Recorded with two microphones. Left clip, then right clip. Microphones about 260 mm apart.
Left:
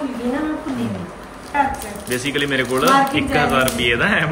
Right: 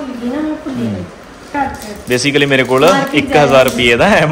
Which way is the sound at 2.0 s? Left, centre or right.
Centre.